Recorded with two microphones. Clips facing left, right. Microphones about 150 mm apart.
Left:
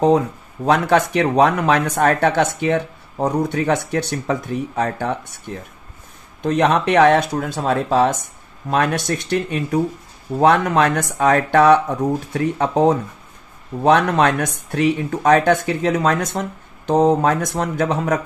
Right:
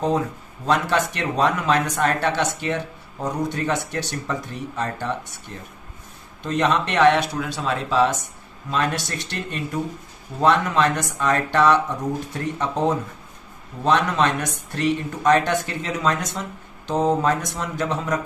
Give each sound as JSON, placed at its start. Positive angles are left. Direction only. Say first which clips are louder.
{"t": 0.7, "sound": "speech", "louder": "left 5 dB", "side_deg": 55}
{"t": 8.6, "sound": "speech", "louder": "left 5 dB", "side_deg": 60}